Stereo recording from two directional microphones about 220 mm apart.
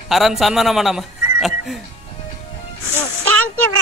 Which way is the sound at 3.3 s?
75° right (ahead or behind).